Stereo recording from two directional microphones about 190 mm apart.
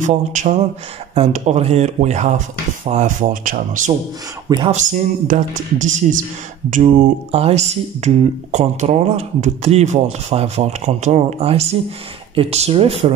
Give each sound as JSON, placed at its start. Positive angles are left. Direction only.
{"t": 0.0, "sound": "speech", "side_deg": -40}
{"t": 4.5, "sound": "speech", "side_deg": -20}
{"t": 5.3, "sound": "speech", "side_deg": -40}